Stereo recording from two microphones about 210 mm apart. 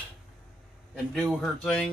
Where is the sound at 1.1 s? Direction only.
Centre (ahead or behind).